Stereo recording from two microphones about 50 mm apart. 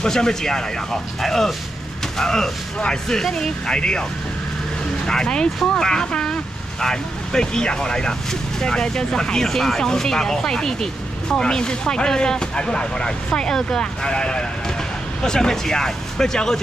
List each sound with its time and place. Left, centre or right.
0.0 s speech: centre
5.0 s speech: centre